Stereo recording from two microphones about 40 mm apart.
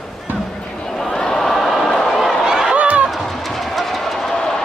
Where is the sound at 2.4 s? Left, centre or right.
Centre.